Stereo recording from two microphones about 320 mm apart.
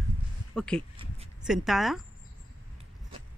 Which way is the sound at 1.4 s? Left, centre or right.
Centre.